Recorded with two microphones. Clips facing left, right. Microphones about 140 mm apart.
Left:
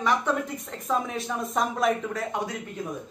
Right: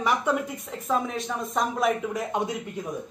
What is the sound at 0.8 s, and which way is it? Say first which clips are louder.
Speech: right 1 dB; centre (ahead or behind).